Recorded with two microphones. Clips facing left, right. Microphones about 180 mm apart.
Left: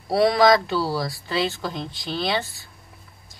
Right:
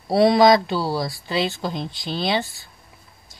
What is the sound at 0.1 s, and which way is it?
Speech, 25° right (ahead or behind).